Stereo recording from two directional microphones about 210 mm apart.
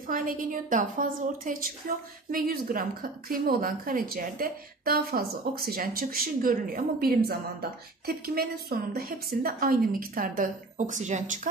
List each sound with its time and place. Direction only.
0.1 s a woman's voice: 40° right (ahead or behind)